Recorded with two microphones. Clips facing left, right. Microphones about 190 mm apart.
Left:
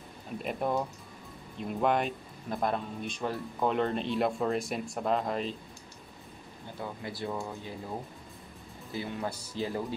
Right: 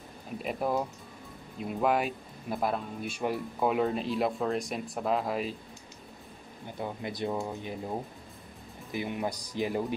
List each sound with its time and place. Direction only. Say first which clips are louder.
0.4 s speech: right 1 dB; centre (ahead or behind)
6.8 s speech: right 3 dB; 20° right (ahead or behind)
8.9 s speech: right 2 dB; 15° right (ahead or behind)